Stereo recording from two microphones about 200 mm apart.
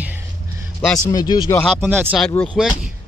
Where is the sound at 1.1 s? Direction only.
20° left (ahead or behind).